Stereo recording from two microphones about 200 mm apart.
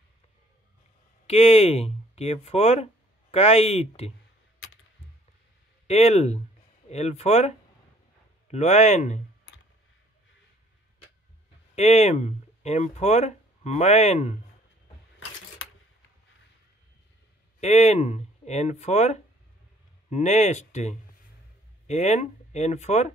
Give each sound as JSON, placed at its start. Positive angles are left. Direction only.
{"t": 1.2, "sound": "speech", "side_deg": 30}
{"t": 5.9, "sound": "speech", "side_deg": 30}
{"t": 11.7, "sound": "speech", "side_deg": 30}
{"t": 17.6, "sound": "speech", "side_deg": 35}